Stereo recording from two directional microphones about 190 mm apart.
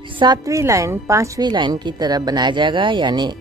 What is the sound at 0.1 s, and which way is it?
A woman's voice, 25° right (ahead or behind).